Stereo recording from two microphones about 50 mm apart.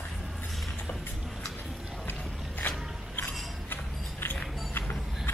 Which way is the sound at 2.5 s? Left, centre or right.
Left.